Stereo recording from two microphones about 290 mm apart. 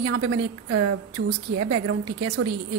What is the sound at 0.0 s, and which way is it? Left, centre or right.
A woman's voice, right.